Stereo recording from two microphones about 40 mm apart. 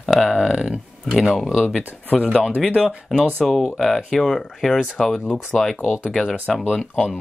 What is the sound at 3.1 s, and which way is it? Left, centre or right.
Speech, centre.